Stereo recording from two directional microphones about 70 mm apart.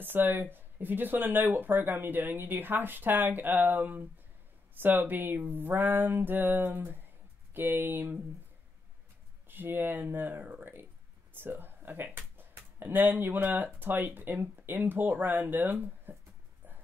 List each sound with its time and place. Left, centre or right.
0.0 s speech: right
9.5 s speech: right